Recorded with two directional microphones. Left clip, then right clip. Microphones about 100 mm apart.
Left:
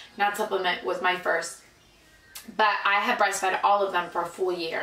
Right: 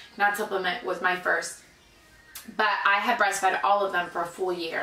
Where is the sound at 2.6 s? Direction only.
5° right (ahead or behind).